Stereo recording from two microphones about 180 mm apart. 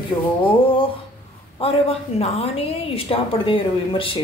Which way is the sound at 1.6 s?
35° left (ahead or behind).